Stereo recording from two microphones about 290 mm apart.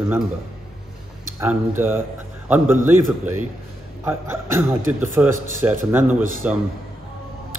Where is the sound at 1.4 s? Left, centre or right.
Centre.